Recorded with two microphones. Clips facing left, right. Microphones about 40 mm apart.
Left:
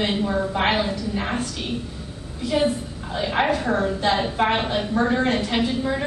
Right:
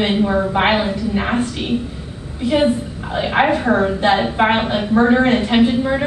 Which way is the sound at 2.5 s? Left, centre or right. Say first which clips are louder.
Right 6 dB; right.